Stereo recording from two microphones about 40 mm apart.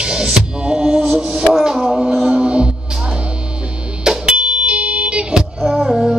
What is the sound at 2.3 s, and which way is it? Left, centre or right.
Music, right.